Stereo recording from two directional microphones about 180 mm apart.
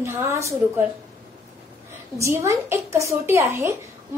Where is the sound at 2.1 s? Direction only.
15° right (ahead or behind).